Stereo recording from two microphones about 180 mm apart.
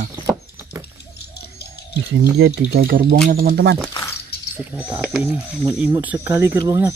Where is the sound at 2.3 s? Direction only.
65° right (ahead or behind).